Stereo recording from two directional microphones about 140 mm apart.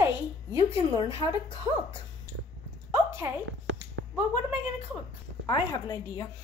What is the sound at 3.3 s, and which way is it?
Speech, 20° right (ahead or behind).